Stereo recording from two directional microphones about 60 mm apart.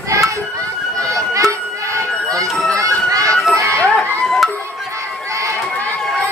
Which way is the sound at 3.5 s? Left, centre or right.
Right.